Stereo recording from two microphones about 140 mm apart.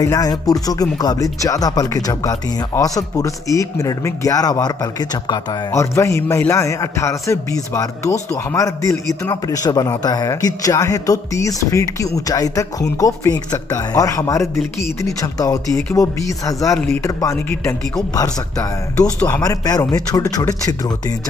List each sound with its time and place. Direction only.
0.0 s a man's voice: 25° left (ahead or behind)
19.1 s speech: 15° left (ahead or behind)
19.4 s a man's voice: 25° left (ahead or behind)